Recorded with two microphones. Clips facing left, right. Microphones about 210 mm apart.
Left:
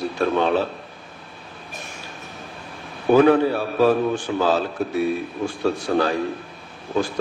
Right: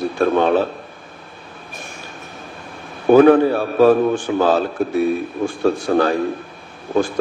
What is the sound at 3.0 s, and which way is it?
A man's voice, 50° right (ahead or behind).